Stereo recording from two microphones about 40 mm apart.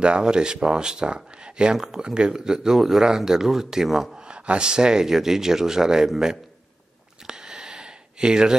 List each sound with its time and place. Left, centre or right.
0.0 s speech: right
4.3 s speech: right
7.2 s a sound: centre